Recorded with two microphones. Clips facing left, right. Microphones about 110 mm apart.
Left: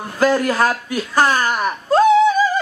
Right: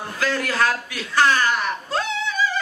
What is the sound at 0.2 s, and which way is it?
Speech, 45° left (ahead or behind).